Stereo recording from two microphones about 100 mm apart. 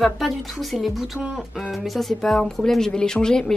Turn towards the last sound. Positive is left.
turn(degrees=5)  # may be behind; listen again after turning